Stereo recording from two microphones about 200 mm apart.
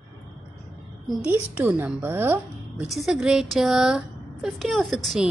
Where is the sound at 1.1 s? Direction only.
5° right (ahead or behind).